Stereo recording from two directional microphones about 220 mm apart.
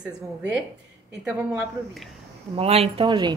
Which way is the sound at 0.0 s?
5° right (ahead or behind).